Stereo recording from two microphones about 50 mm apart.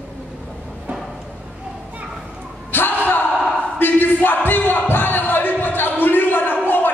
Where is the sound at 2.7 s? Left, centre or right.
Left.